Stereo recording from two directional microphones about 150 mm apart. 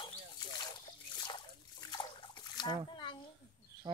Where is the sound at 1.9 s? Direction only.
30° left (ahead or behind).